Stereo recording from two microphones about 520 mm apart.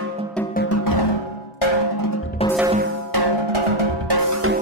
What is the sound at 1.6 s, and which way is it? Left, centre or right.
Drum, left.